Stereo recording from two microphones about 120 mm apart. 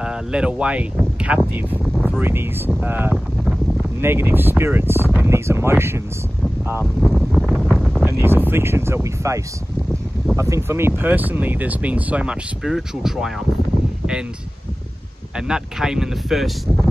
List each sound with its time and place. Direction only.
0.0 s speech: 5° right (ahead or behind)
7.0 s a sound: centre (ahead or behind)
7.6 s wind noise: centre (ahead or behind)
8.0 s speech: 20° right (ahead or behind); by 13.3 s 5° right (ahead or behind)
15.3 s speech: 5° right (ahead or behind)